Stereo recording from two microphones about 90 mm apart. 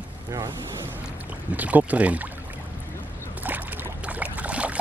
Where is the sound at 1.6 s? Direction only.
20° right (ahead or behind).